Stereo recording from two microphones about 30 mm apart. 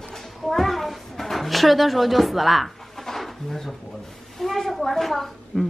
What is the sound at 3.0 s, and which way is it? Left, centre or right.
Bird, centre.